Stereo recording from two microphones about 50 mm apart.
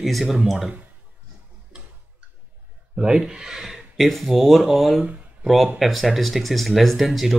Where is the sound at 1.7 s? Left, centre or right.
Right.